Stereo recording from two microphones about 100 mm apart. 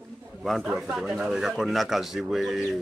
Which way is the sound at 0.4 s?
Centre (ahead or behind).